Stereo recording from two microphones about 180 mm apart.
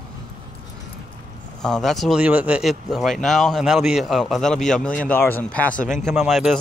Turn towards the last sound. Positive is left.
turn(degrees=0)  # may be behind; listen again after turning